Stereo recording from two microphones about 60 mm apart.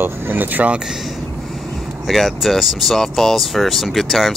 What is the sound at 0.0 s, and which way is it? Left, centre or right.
Speech, right.